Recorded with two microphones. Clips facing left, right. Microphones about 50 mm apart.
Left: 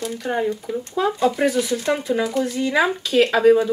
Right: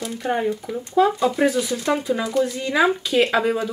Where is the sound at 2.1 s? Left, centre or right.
Centre.